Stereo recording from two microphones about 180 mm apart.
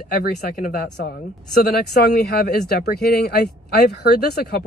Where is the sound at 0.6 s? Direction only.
60° left (ahead or behind).